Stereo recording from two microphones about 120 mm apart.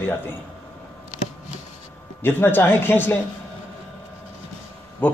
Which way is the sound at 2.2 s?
20° left (ahead or behind).